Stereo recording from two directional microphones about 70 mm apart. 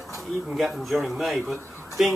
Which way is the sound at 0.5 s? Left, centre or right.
Centre.